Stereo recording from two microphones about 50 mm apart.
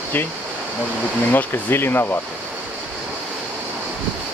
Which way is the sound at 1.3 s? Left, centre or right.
Left.